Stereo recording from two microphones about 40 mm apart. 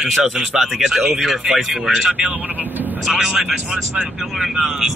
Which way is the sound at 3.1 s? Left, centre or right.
Centre.